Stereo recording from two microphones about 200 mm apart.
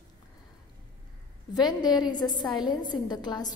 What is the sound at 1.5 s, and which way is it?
A woman's voice, 20° left (ahead or behind).